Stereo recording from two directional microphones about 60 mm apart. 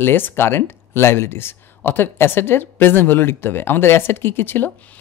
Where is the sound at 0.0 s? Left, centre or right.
Left.